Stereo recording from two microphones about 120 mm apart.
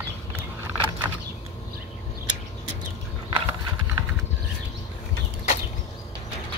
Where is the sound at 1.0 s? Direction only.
25° right (ahead or behind).